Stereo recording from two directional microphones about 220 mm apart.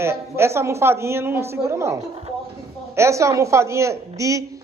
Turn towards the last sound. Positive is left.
turn(degrees=-15)  # may be behind; listen again after turning